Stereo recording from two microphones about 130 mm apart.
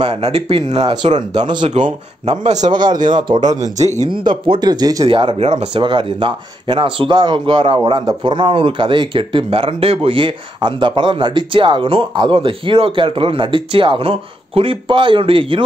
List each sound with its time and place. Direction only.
0.1 s speech: 45° right (ahead or behind)
1.8 s speech: 55° right (ahead or behind)
2.7 s speech: 35° right (ahead or behind)
5.0 s speech: 40° right (ahead or behind)